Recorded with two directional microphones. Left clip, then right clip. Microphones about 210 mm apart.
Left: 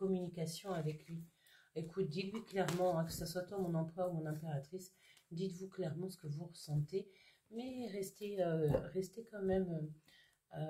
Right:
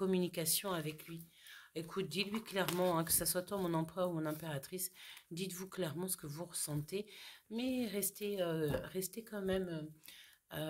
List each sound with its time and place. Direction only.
0.1 s speech: 45° right (ahead or behind); by 9.6 s 30° right (ahead or behind)